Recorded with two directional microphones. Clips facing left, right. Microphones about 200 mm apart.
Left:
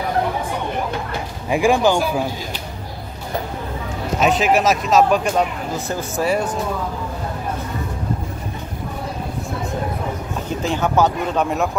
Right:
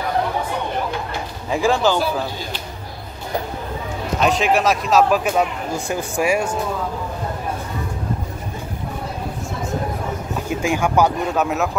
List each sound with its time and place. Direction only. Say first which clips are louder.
1.5 s speech: left 2 dB; 15° left (ahead or behind)
4.2 s speech: left 1 dB; centre (ahead or behind)
10.5 s speech: right 1 dB; 10° right (ahead or behind)